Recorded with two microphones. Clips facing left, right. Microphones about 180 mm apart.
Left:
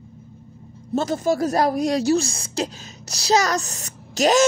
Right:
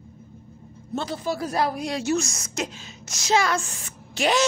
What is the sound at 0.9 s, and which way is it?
Speech, 45° left (ahead or behind).